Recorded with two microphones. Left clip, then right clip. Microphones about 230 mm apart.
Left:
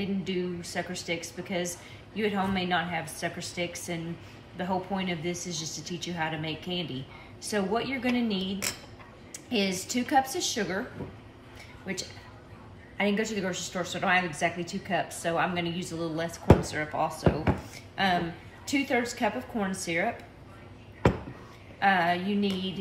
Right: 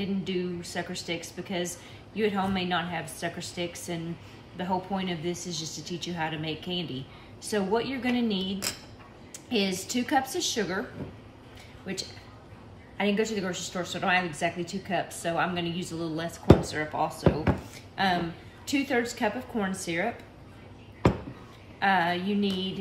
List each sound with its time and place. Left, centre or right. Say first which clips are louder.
0.0 s a woman's voice: even; centre
8.4 s speech: even; left
9.5 s a woman's voice: right 1 dB; centre
11.9 s a woman's voice: even; centre
21.7 s a woman's voice: even; centre